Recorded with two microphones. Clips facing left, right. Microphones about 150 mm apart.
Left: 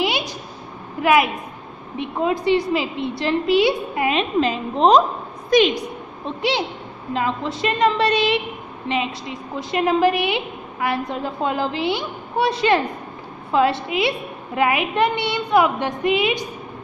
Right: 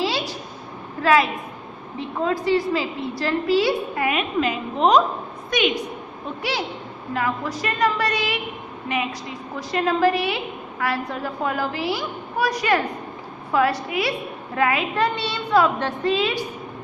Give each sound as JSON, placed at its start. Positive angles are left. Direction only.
{"t": 0.0, "sound": "a sound", "side_deg": 20}
{"t": 1.0, "sound": "a woman's voice", "side_deg": 15}
{"t": 6.2, "sound": "a woman's voice", "side_deg": 25}